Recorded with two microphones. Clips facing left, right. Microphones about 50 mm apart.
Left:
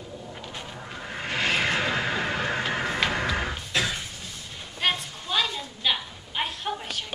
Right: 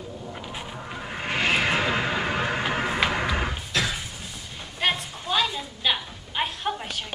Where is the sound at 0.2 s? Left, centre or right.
Centre.